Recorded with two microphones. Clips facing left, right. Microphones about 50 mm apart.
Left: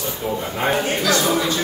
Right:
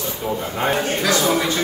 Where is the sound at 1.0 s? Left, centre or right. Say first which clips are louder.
Even; right.